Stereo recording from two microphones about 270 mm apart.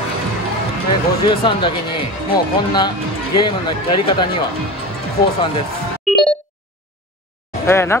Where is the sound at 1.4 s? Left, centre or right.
Centre.